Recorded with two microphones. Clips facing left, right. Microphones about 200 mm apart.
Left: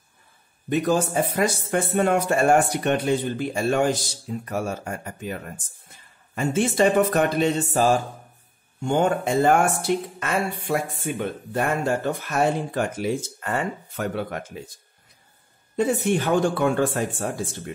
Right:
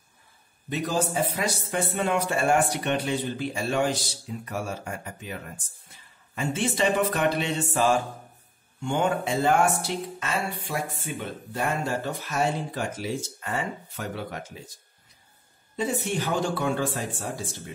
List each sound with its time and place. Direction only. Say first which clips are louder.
0.7 s a man's voice: left 6 dB; 55° left (ahead or behind)
15.7 s speech: left 6 dB; 55° left (ahead or behind)